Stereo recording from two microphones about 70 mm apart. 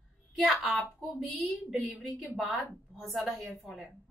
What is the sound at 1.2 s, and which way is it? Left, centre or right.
A woman's voice, centre.